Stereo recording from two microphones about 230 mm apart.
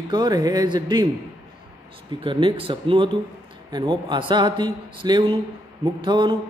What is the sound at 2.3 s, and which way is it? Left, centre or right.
A man's voice, right.